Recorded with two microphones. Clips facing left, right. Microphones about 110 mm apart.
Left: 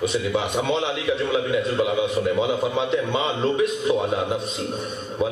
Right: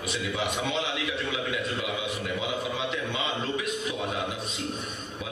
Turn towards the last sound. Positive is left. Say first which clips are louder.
# left 10 dB
turn(degrees=30)  # may be behind; listen again after turning